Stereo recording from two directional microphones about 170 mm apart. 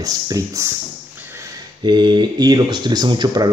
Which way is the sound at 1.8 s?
25° right (ahead or behind).